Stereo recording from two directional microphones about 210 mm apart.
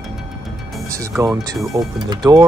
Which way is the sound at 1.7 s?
20° right (ahead or behind).